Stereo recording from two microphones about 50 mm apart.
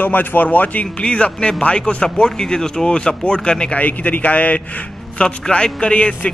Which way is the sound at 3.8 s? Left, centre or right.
Left.